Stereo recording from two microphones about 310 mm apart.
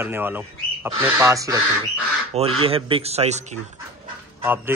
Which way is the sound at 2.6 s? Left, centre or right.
Centre.